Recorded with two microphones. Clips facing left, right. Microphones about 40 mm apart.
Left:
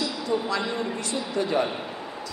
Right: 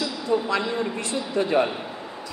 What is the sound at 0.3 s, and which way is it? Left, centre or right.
A man's voice, centre.